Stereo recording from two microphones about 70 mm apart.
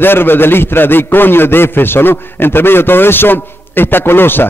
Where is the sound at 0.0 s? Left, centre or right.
Left.